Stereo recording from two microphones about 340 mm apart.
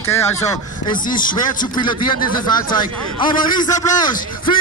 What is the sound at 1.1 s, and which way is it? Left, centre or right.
Speech, left.